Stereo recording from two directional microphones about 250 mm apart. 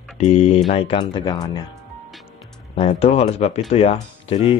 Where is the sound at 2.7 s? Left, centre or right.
Left.